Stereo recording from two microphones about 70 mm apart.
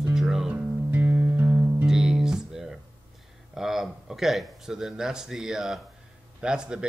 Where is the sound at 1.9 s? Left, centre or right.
Centre.